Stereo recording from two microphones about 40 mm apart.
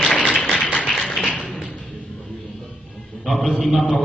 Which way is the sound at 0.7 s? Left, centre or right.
Left.